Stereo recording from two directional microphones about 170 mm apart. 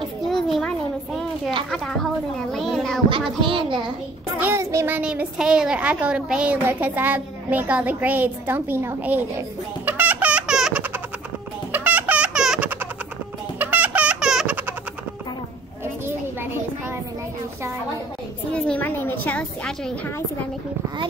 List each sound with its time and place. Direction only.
0.3 s a sound: centre (ahead or behind)
2.5 s a child's voice: centre (ahead or behind)
3.1 s child singing: 30° right (ahead or behind)
4.4 s a child's voice: 15° right (ahead or behind)
9.8 s music: 10° right (ahead or behind)
13.6 s fowl: 10° right (ahead or behind)
18.5 s a sound: 10° left (ahead or behind)